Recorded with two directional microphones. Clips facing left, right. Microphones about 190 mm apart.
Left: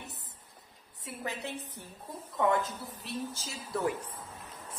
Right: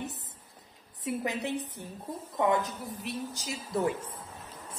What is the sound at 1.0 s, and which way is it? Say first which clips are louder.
A woman's voice: right 7 dB; 15° right (ahead or behind).